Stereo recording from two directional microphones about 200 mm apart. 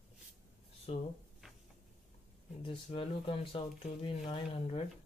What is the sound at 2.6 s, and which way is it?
Speech, 25° left (ahead or behind).